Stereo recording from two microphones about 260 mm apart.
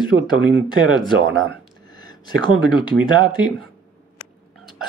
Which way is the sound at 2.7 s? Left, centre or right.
Centre.